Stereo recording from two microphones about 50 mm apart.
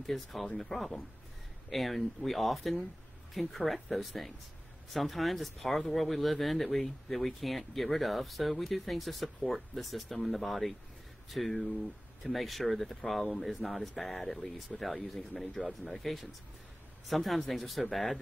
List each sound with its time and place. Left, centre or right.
0.0 s speech: centre
15.8 s speech: centre